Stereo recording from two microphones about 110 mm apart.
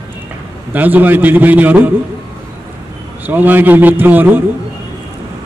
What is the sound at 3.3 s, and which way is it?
A man's voice, 15° right (ahead or behind).